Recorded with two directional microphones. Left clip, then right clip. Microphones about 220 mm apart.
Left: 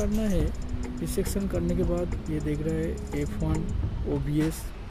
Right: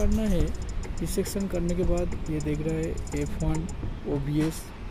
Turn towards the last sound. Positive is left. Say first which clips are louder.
# even
turn(degrees=0)  # may be behind; listen again after turning